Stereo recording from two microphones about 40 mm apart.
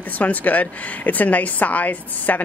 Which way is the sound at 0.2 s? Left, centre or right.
Left.